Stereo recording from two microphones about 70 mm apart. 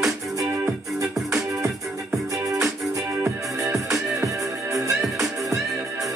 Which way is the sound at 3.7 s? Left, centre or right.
Right.